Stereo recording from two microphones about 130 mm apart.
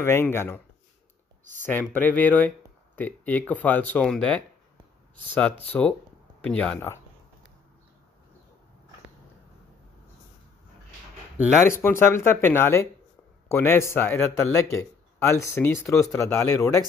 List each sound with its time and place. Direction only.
0.0 s a man's voice: 20° left (ahead or behind)
1.6 s speech: 15° left (ahead or behind)
5.7 s speech: 10° left (ahead or behind)
11.8 s a man's voice: 20° left (ahead or behind)